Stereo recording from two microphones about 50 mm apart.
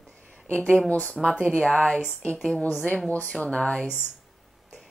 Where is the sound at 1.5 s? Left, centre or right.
Centre.